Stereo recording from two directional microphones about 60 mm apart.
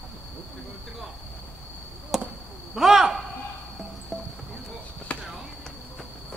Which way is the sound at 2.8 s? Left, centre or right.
Centre.